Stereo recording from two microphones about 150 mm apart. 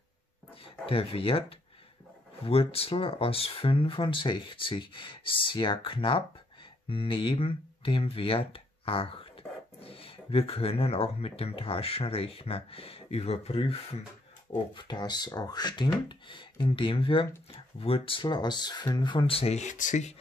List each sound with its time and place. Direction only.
0.8 s speech: 40° left (ahead or behind)
14.7 s speech: 30° left (ahead or behind); by 20.2 s 55° left (ahead or behind)